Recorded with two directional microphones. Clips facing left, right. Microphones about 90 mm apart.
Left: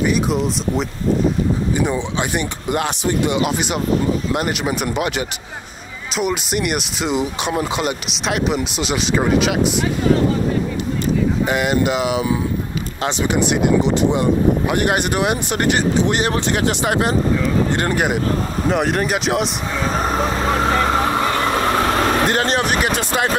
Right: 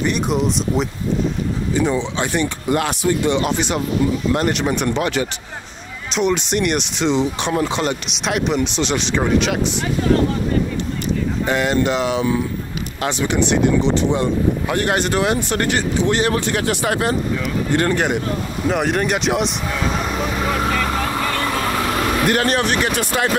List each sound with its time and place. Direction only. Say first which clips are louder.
0.0 s speech: left 1 dB; centre (ahead or behind)
1.7 s speech: right 1 dB; 15° left (ahead or behind)
3.3 s speech: right 1 dB; 10° left (ahead or behind)
11.4 s speech: right 3 dB; 10° left (ahead or behind)
17.9 s speech: left 1 dB; 5° left (ahead or behind)
19.8 s vehicle: left 4 dB; 40° left (ahead or behind)
21.7 s vehicle: left 3 dB; 45° left (ahead or behind)
22.2 s speech: even; 25° left (ahead or behind)